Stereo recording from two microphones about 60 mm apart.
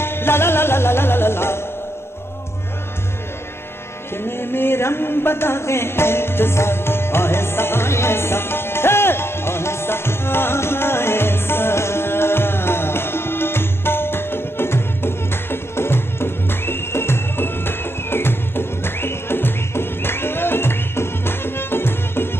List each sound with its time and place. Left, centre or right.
0.0 s music: left
4.2 s music: left